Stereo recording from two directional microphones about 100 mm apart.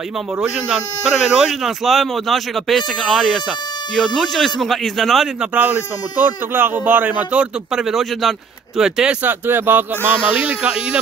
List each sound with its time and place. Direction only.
1.1 s speech: centre (ahead or behind)
5.5 s a man's voice: 15° right (ahead or behind)
7.7 s speech: centre (ahead or behind)
9.2 s speech: 20° right (ahead or behind)